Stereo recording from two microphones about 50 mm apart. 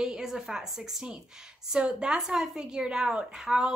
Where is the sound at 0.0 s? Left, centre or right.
Centre.